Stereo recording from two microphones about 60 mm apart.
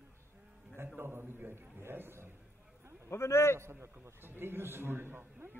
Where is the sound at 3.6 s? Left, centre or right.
Right.